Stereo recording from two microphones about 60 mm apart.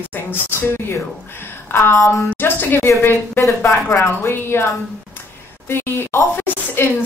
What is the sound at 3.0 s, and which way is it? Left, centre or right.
Speech, left.